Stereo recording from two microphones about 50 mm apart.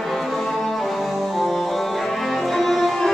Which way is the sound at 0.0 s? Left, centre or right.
Centre.